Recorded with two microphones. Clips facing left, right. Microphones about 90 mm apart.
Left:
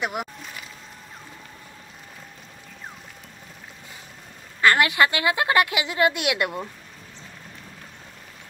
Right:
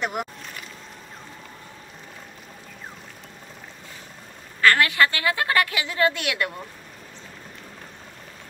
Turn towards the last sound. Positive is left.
turn(degrees=20)  # may be behind; listen again after turning